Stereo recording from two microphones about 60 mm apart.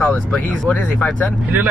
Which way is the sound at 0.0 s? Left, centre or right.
Centre.